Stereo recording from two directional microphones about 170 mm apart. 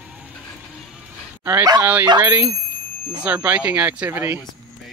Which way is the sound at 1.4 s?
15° right (ahead or behind).